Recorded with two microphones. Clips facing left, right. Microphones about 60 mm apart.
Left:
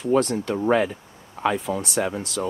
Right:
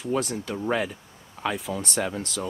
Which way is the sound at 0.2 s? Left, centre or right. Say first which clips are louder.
Left 6 dB; centre.